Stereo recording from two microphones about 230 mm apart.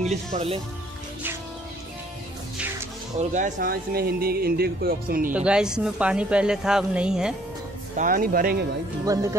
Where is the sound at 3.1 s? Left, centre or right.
Right.